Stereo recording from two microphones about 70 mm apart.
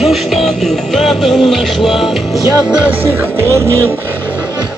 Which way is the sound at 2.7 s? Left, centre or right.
Centre.